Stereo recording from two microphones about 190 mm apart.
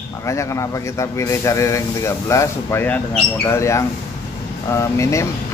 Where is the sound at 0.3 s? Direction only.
15° left (ahead or behind).